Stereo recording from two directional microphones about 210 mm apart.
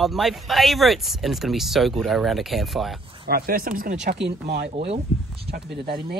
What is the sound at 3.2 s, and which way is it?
Speech, 45° right (ahead or behind).